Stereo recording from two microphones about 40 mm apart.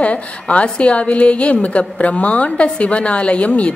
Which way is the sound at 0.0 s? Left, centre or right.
Left.